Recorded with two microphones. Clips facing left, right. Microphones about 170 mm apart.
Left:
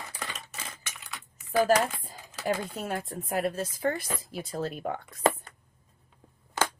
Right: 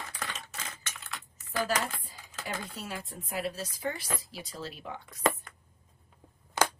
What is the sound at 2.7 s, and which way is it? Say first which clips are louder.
Speech: left 7 dB; 50° left (ahead or behind).